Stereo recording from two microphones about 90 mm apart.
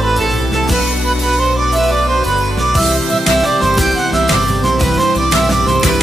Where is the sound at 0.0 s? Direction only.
Centre (ahead or behind).